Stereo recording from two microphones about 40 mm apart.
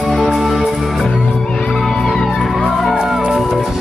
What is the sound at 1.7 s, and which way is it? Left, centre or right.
Music, centre.